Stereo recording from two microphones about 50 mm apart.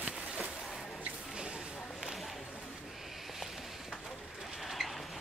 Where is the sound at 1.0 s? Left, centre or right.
Right.